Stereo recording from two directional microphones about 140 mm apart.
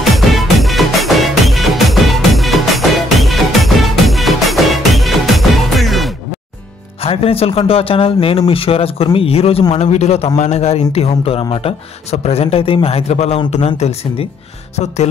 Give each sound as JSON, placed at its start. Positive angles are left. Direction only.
{"t": 0.0, "sound": "music", "side_deg": 0}
{"t": 7.0, "sound": "speech", "side_deg": 45}